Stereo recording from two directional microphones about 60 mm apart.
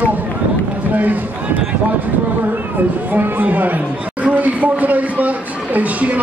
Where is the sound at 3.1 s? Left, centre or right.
Right.